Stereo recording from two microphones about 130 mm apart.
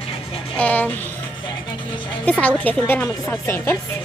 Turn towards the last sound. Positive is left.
turn(degrees=15)  # may be behind; listen again after turning